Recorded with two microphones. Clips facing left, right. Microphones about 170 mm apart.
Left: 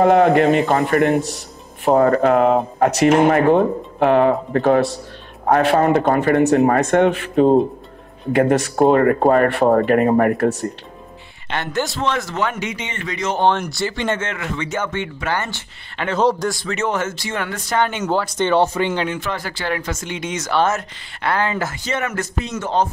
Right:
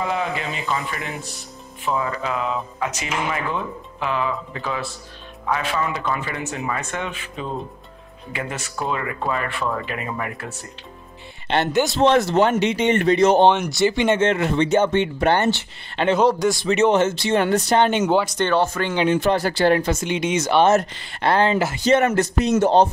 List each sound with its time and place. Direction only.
0.0 s a man's voice: 60° left (ahead or behind)
11.4 s speech: 30° right (ahead or behind)
12.0 s speech: 35° right (ahead or behind)
13.4 s speech: 20° right (ahead or behind)
14.3 s speech: 30° right (ahead or behind)
16.2 s a man's voice: 10° right (ahead or behind)
18.7 s speech: 10° left (ahead or behind)
19.1 s speech: 35° right (ahead or behind); by 20.7 s 20° right (ahead or behind)
20.7 s speech: 35° right (ahead or behind)